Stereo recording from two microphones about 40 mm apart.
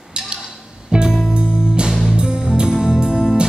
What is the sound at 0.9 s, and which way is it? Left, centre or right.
Music, right.